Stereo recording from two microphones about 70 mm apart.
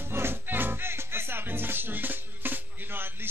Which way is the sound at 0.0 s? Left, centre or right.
Right.